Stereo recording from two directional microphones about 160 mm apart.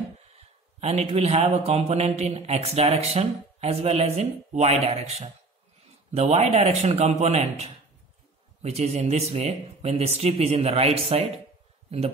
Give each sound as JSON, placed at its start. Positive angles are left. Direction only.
{"t": 0.3, "sound": "a man's voice", "side_deg": -40}